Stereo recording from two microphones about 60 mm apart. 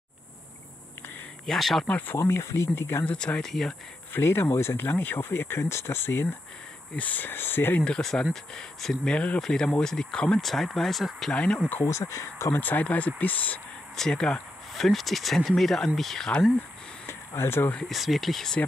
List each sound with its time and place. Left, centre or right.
1.4 s speech: centre
1.9 s speech: left
2.1 s speech: left
3.1 s speech: centre
4.1 s speech: left
7.0 s speech: left
7.8 s speech: centre
10.4 s speech: centre
11.3 s speech: centre
11.8 s speech: left
12.5 s speech: left
13.9 s speech: centre
17.4 s speech: left
17.8 s speech: centre